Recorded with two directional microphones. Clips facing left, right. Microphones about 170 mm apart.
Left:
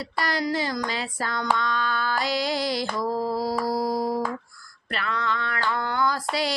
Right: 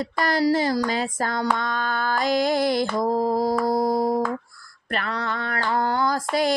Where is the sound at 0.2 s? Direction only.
45° right (ahead or behind).